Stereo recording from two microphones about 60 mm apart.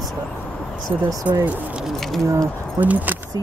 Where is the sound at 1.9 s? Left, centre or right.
Centre.